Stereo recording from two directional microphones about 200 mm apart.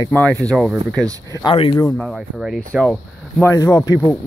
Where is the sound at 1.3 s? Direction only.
25° left (ahead or behind).